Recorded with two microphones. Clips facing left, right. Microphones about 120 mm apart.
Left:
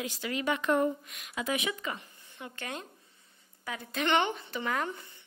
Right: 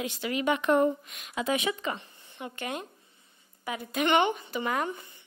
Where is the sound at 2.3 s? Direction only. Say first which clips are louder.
Right 5 dB; 20° right (ahead or behind).